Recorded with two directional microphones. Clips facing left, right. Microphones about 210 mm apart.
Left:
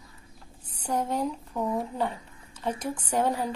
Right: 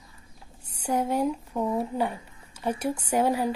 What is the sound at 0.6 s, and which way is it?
Speech, 10° right (ahead or behind).